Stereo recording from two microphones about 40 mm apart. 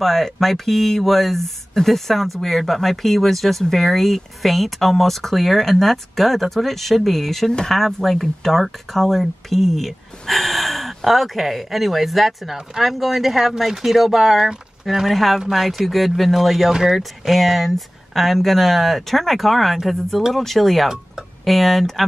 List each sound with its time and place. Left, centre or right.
0.0 s speech: centre